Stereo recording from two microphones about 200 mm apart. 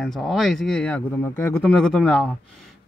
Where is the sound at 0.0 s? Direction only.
Centre (ahead or behind).